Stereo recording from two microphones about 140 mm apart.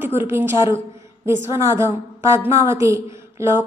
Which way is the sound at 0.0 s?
15° right (ahead or behind).